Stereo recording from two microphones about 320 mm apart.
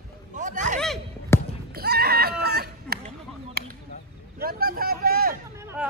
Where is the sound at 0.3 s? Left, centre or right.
Right.